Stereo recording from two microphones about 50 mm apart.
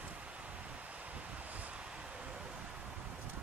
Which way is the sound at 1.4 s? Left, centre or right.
Right.